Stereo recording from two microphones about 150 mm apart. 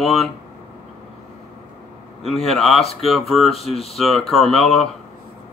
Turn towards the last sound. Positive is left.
turn(degrees=0)  # may be behind; listen again after turning